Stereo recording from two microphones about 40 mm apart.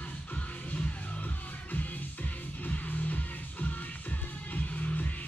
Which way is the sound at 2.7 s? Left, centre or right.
Left.